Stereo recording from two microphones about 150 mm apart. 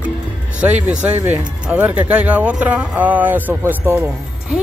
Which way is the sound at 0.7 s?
10° right (ahead or behind).